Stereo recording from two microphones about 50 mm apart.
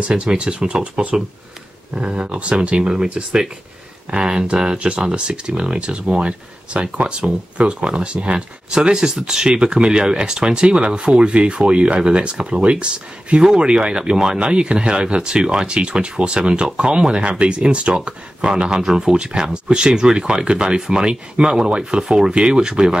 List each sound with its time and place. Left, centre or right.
0.0 s speech: centre